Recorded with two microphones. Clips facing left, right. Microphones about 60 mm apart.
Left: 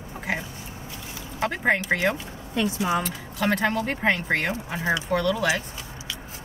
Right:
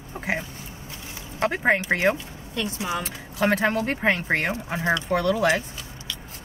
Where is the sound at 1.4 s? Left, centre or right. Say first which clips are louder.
Right 1 dB; right.